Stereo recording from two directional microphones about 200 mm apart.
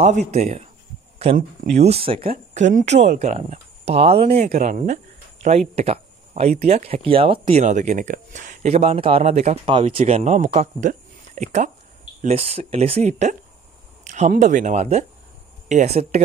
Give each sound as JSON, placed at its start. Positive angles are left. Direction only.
{"t": 0.3, "sound": "speech", "side_deg": -30}
{"t": 1.8, "sound": "speech", "side_deg": -30}